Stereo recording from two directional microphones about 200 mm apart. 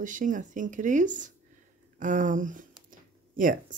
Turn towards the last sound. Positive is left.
turn(degrees=-45)  # may be behind; listen again after turning